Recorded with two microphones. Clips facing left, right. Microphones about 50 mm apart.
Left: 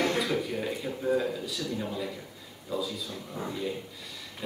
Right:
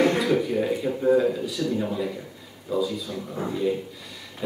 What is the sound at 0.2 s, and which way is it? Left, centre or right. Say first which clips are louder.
Speech: right 7 dB; centre.